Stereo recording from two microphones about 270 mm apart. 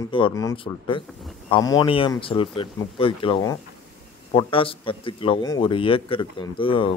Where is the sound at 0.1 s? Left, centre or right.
Centre.